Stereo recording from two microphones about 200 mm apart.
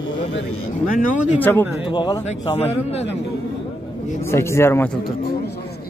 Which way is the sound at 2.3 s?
35° left (ahead or behind).